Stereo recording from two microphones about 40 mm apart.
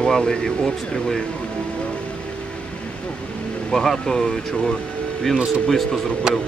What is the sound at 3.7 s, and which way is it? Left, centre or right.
Speech, centre.